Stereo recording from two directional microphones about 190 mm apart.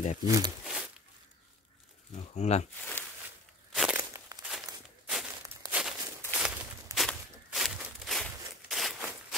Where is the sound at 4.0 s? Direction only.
15° right (ahead or behind).